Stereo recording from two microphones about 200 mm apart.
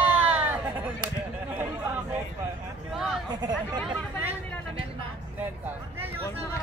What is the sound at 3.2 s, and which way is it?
Chatter, 20° right (ahead or behind).